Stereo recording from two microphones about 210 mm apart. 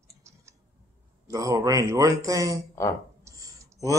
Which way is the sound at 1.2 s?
15° right (ahead or behind).